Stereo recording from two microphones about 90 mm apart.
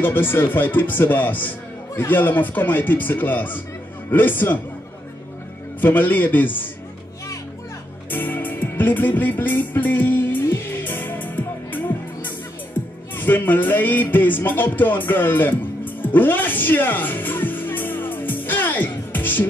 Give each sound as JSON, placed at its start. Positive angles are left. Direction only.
{"t": 0.0, "sound": "speech", "side_deg": 25}
{"t": 5.8, "sound": "speech", "side_deg": 20}
{"t": 8.1, "sound": "music", "side_deg": 20}